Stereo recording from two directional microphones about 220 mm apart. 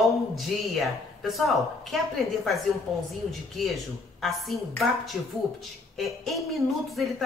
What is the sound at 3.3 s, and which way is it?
Speech, centre (ahead or behind).